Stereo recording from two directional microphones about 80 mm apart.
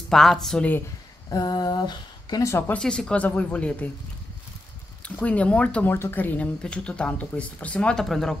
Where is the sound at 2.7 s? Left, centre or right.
Centre.